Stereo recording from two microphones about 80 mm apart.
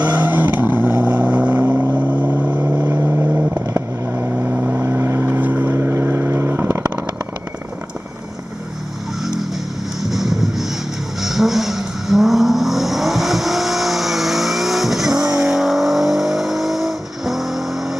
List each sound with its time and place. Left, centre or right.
0.0 s vehicle: right
9.2 s vehicle: centre
10.0 s a sound: centre
11.1 s vehicle: centre